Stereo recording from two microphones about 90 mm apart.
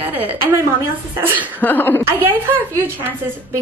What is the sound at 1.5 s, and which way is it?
Speech, 20° left (ahead or behind).